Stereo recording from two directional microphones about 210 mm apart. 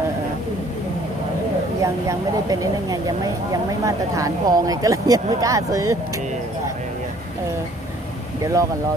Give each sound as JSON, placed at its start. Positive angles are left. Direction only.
{"t": 1.8, "sound": "speech", "side_deg": -15}
{"t": 8.4, "sound": "speech", "side_deg": -15}